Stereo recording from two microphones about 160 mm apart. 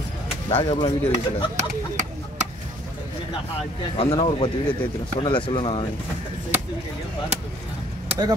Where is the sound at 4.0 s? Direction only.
35° left (ahead or behind).